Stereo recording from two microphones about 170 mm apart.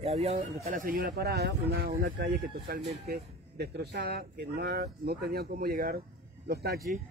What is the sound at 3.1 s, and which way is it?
Speech, 75° right (ahead or behind).